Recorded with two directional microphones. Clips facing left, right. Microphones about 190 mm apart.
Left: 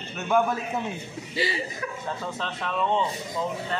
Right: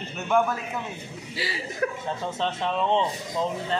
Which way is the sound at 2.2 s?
25° right (ahead or behind).